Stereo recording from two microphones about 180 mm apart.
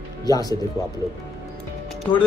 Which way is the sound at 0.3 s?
20° left (ahead or behind).